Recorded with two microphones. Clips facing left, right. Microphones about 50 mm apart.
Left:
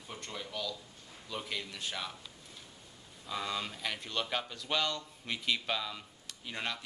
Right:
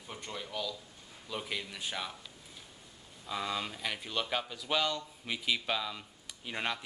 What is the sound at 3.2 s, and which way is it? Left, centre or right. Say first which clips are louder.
Speech: right 1 dB; centre.